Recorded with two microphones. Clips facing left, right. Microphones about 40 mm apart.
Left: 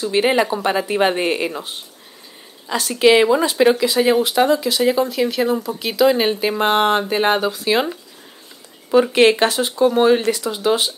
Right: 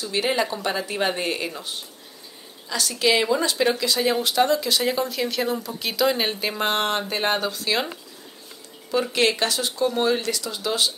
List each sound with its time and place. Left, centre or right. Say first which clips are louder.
0.0 s speech: left 7 dB; left
2.7 s speech: left 8 dB; left
8.9 s speech: left 8 dB; left